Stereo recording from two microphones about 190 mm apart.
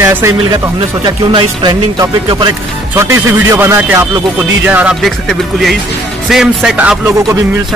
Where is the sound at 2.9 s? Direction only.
15° right (ahead or behind).